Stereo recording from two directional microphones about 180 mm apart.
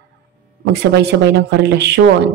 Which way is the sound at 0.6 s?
70° right (ahead or behind).